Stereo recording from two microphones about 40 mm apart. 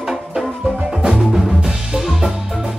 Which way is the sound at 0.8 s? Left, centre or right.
Centre.